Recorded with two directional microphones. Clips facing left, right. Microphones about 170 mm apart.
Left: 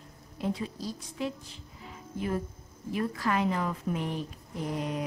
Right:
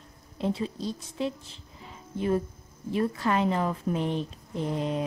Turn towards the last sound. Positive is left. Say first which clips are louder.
# right 4 dB
turn(degrees=-25)  # may be behind; listen again after turning